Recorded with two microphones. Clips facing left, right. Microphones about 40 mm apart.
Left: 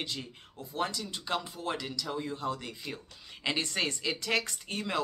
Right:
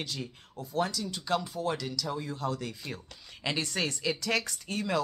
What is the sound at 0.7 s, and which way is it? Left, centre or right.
Speech, left.